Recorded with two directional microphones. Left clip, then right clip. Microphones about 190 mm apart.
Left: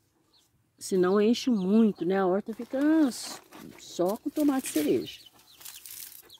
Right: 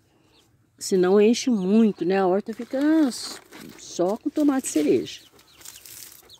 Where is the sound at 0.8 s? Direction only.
10° right (ahead or behind).